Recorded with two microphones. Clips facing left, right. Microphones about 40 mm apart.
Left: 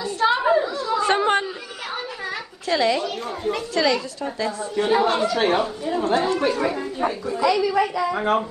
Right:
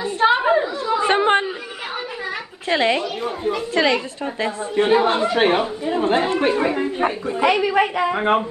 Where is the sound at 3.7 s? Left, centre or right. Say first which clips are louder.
Right 2 dB; right.